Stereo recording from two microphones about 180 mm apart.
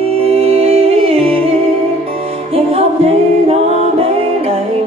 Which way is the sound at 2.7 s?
35° right (ahead or behind).